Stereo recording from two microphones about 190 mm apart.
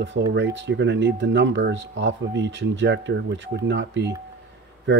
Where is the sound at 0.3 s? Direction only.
70° right (ahead or behind).